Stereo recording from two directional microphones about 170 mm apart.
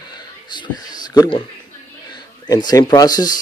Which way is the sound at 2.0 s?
25° left (ahead or behind).